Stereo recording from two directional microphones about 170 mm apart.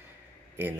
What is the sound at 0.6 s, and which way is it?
Speech, 15° right (ahead or behind).